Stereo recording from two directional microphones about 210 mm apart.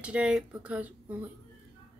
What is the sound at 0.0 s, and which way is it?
Speech, 5° right (ahead or behind).